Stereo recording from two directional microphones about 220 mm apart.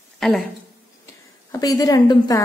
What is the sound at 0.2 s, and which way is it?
Speech, centre (ahead or behind).